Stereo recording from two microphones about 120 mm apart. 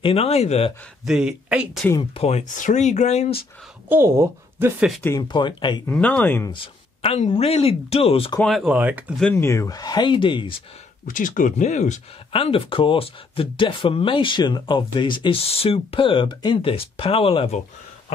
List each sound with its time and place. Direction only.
0.0 s speech: 55° left (ahead or behind)
1.0 s speech: 5° right (ahead or behind)
2.1 s speech: 65° left (ahead or behind)
3.9 s a woman's voice: 20° right (ahead or behind)
5.3 s speech: 40° left (ahead or behind)
5.9 s speech: 10° left (ahead or behind)
6.5 s a sound: 50° left (ahead or behind)
7.2 s speech: 60° left (ahead or behind)
8.6 s speech: 15° right (ahead or behind)
9.3 s speech: 20° left (ahead or behind); by 10.5 s 45° left (ahead or behind)
11.1 s speech: 90° left
12.3 s speech: 50° left (ahead or behind)